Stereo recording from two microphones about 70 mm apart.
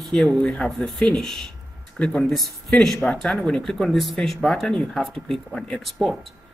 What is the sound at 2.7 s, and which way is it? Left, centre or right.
Speech, centre.